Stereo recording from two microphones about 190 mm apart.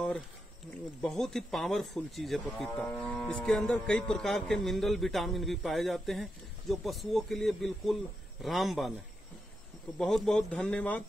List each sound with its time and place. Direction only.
1.0 s speech: 5° left (ahead or behind)
9.9 s speech: centre (ahead or behind)